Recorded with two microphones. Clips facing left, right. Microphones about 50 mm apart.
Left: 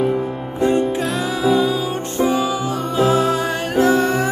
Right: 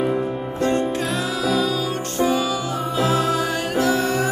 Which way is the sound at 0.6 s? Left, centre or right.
Centre.